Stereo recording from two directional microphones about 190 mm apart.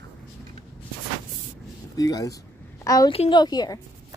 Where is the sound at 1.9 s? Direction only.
20° left (ahead or behind).